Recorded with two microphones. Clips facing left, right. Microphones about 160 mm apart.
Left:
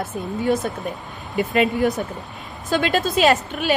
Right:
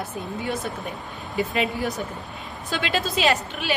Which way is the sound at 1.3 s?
60° left (ahead or behind).